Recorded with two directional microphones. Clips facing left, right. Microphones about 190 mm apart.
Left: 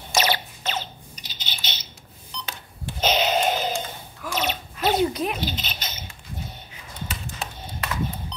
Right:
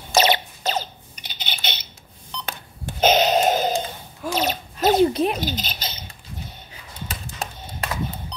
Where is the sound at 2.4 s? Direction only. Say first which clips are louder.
Right 3 dB; 50° right (ahead or behind).